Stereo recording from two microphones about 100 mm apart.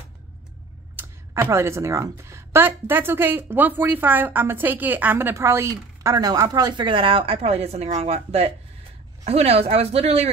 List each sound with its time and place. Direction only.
0.9 s speech: 25° right (ahead or behind)
6.1 s speech: 40° right (ahead or behind)
6.9 s a woman's voice: 60° right (ahead or behind); by 10.3 s 90° right